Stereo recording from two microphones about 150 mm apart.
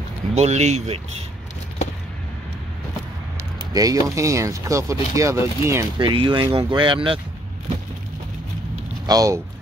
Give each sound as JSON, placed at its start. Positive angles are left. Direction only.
{"t": 0.3, "sound": "speech", "side_deg": -45}
{"t": 3.7, "sound": "speech", "side_deg": -25}
{"t": 5.9, "sound": "speech", "side_deg": -30}
{"t": 9.0, "sound": "speech", "side_deg": -25}